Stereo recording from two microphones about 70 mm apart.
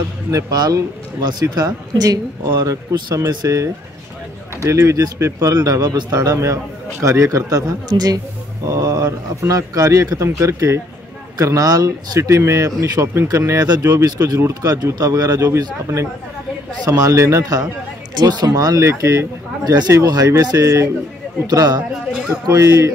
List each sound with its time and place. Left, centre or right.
0.5 s a man's voice: right
2.6 s a man's voice: right
12.2 s a man's voice: right
13.3 s a man's voice: right
15.0 s speech: right
16.8 s speech: right
18.1 s speech: right
18.9 s a man's voice: right
19.6 s a man's voice: right
20.0 s a man's voice: right
21.5 s a man's voice: right
22.5 s a man's voice: right